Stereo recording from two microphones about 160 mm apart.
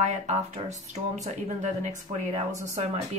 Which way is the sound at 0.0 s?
45° right (ahead or behind).